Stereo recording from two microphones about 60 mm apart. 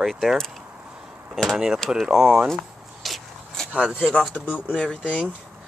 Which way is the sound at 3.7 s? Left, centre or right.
Left.